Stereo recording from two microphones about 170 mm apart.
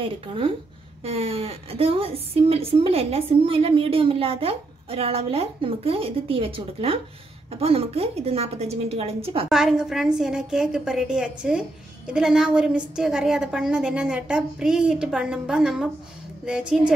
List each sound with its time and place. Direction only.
0.0 s a woman's voice: 30° right (ahead or behind)
9.5 s a woman's voice: centre (ahead or behind)